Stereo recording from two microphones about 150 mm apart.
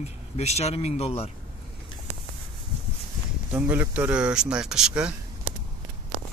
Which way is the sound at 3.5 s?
10° right (ahead or behind).